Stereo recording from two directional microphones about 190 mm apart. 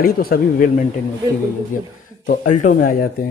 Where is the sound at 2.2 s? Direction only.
45° left (ahead or behind).